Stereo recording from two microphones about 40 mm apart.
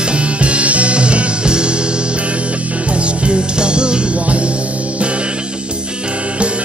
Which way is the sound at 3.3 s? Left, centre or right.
Right.